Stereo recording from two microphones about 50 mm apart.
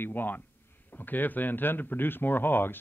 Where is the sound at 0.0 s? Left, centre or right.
Left.